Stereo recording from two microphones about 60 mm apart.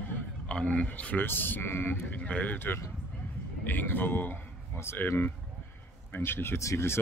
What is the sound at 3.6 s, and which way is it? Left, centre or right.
Speech, left.